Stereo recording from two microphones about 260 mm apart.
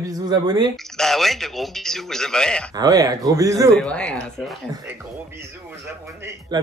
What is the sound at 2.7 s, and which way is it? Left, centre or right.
A man's voice, centre.